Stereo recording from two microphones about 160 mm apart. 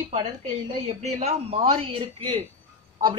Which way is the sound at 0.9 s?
45° right (ahead or behind).